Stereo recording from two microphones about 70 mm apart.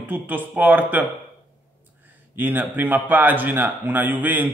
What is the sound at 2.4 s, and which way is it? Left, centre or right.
A man's voice, right.